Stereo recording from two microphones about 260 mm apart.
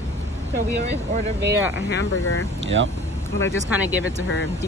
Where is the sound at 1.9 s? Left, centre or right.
Left.